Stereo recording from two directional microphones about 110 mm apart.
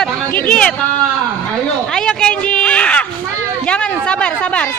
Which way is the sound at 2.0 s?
10° left (ahead or behind).